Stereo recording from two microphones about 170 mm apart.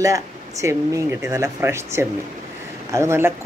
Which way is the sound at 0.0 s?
20° right (ahead or behind).